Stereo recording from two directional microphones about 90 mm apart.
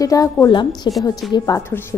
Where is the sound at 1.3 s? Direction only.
40° left (ahead or behind).